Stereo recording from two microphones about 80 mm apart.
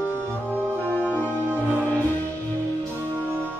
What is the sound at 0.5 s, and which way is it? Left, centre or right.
Music, right.